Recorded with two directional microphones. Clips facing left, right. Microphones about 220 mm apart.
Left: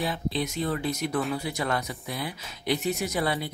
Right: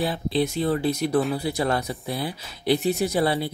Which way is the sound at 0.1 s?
30° right (ahead or behind).